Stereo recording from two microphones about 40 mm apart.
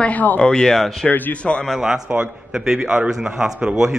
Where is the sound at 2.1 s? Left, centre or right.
Right.